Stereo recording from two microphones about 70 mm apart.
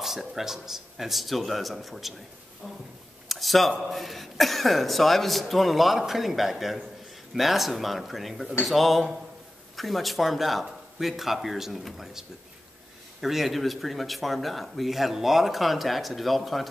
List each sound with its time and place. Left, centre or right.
0.0 s speech: centre